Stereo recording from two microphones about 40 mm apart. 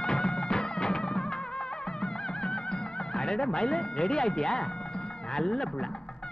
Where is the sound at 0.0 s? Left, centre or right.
Centre.